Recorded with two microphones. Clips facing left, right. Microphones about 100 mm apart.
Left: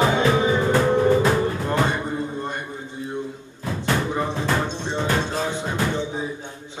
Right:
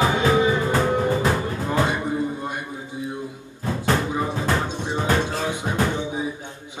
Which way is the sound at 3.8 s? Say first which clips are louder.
Even; 10° right (ahead or behind).